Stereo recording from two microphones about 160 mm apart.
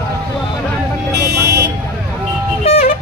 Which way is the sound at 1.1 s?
90° right.